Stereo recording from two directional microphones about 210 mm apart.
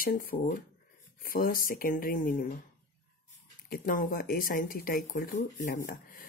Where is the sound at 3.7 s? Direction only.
40° left (ahead or behind).